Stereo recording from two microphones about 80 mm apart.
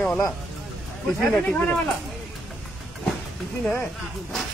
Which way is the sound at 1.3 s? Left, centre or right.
Centre.